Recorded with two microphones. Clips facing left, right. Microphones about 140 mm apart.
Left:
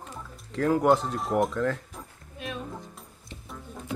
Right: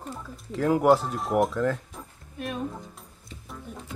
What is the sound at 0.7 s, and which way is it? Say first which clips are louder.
Speech: right 2 dB; 5° right (ahead or behind).